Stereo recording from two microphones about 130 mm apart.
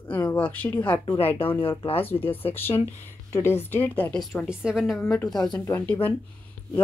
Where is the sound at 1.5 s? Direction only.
45° left (ahead or behind).